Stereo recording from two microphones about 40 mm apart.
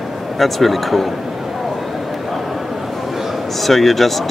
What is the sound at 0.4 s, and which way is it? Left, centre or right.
Speech, centre.